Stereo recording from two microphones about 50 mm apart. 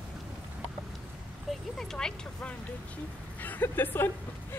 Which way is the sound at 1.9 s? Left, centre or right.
Centre.